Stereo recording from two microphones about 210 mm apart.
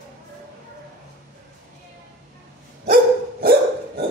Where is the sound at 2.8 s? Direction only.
45° right (ahead or behind).